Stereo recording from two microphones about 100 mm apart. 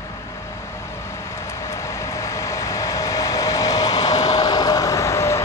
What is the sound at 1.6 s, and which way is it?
Vehicle, 30° left (ahead or behind).